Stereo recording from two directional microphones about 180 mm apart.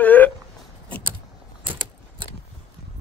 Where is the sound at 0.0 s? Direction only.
10° left (ahead or behind).